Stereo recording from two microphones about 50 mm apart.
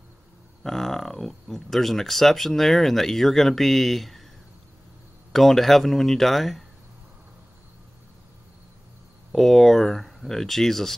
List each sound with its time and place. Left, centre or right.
0.7 s speech: centre
5.3 s speech: centre
9.3 s speech: centre